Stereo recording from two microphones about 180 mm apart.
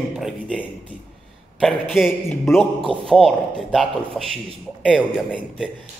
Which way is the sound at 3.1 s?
Centre (ahead or behind).